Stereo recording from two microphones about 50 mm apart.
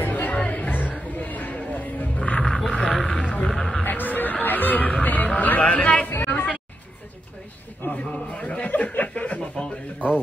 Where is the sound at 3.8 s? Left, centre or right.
Left.